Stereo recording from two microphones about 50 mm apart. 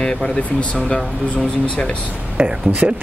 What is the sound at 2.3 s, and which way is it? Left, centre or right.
Speech, centre.